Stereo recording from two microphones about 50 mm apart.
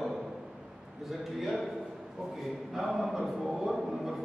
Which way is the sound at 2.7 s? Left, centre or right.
Centre.